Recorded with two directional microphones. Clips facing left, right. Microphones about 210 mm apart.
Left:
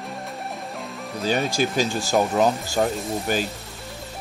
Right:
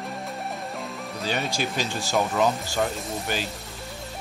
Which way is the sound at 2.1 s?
45° left (ahead or behind).